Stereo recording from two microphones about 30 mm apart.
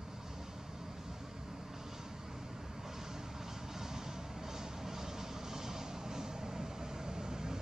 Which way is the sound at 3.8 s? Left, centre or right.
Centre.